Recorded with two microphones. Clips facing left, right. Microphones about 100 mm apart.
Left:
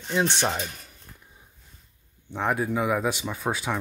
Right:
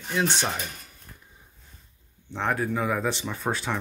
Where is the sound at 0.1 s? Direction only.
25° left (ahead or behind).